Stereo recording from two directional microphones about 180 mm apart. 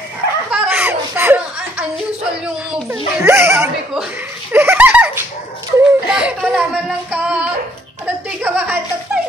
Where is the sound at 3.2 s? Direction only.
15° right (ahead or behind).